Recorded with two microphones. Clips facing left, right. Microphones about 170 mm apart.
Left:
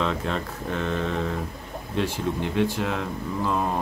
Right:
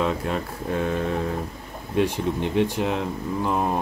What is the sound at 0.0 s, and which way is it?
Speech, 10° right (ahead or behind).